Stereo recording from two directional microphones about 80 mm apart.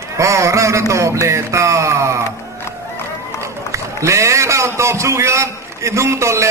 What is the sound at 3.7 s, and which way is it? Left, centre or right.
A man's voice, right.